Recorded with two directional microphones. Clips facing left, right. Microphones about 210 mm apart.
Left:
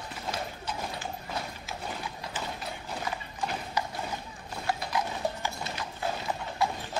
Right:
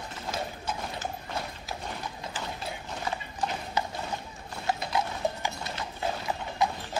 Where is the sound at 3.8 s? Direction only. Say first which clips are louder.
Right 2 dB; 25° right (ahead or behind).